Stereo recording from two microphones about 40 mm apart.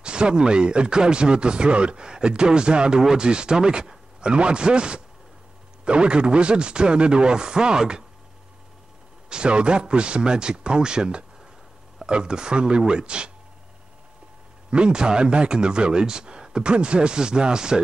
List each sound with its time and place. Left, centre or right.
0.0 s speech: right
9.3 s speech: right
14.7 s speech: right